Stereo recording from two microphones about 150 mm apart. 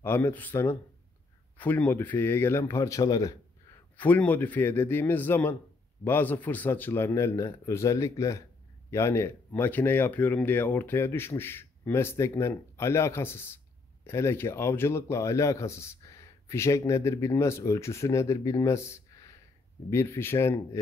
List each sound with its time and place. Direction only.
0.0 s speech: 15° left (ahead or behind)
3.9 s a man's voice: 10° left (ahead or behind)